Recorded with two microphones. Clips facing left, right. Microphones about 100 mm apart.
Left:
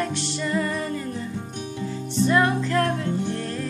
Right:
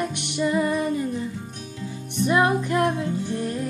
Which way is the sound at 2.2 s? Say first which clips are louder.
Even; 15° right (ahead or behind).